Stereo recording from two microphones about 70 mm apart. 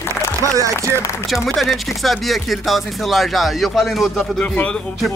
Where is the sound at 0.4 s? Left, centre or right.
Right.